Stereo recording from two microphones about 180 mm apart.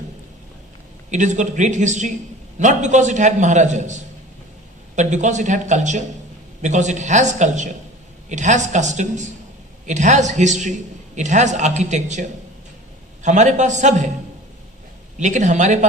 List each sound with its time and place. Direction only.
1.1 s a man's voice: 40° right (ahead or behind)
15.1 s a man's voice: 40° right (ahead or behind)